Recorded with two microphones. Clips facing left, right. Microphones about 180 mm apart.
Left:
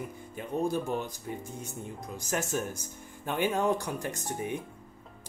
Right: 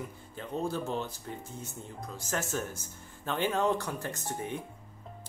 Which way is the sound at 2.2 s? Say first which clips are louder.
Left 2 dB; 15° left (ahead or behind).